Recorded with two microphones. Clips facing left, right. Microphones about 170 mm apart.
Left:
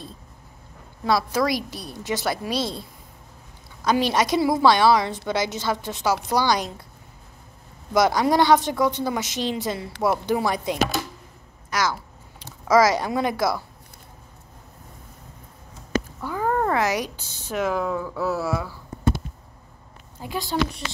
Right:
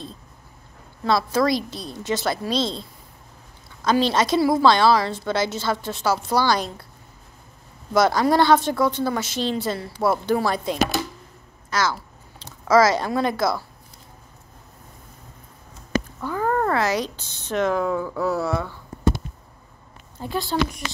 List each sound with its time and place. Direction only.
1.0 s a woman's voice: 10° left (ahead or behind)
7.9 s a woman's voice: 15° left (ahead or behind)
16.2 s speech: 10° left (ahead or behind)
20.2 s a woman's voice: 10° left (ahead or behind)